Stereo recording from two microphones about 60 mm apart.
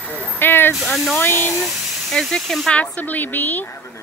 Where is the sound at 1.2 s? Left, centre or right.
Left.